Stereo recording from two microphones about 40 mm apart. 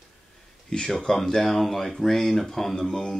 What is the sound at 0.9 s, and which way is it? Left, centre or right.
Speech, centre.